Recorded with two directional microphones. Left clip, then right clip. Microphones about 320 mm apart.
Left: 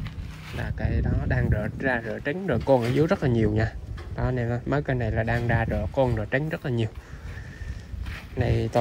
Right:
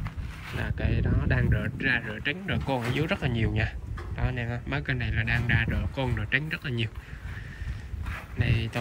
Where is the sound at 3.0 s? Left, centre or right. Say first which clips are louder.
Left 6 dB; right.